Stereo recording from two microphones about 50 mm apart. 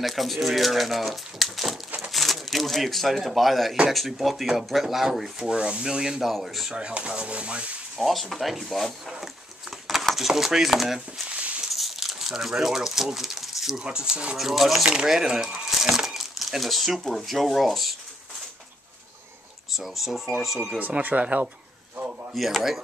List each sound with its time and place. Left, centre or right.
0.0 s speech: centre
5.4 s speech: centre
6.2 s speech: centre
6.7 s speech: right
8.0 s speech: centre
9.2 s a sound: centre
13.7 s speech: centre
14.3 s speech: centre
19.7 s speech: centre
20.8 s speech: right
22.3 s speech: centre